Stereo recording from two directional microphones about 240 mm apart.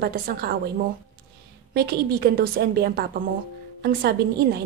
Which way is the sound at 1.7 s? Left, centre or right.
Right.